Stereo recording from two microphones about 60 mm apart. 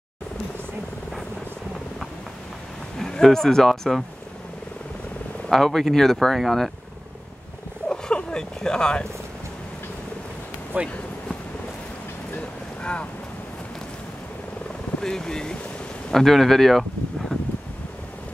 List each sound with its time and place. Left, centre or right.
3.0 s speech: centre
5.5 s speech: centre
7.9 s a sound: centre
10.7 s speech: right
12.4 s boat: centre
15.0 s speech: centre
17.3 s wind: centre